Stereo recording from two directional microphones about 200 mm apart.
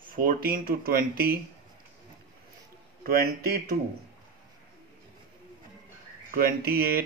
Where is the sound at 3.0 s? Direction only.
45° right (ahead or behind).